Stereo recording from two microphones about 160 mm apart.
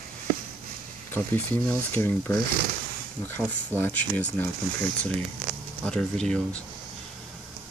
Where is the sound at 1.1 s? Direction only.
10° left (ahead or behind).